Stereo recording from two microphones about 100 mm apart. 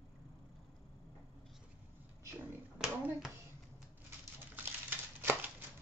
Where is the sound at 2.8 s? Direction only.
10° right (ahead or behind).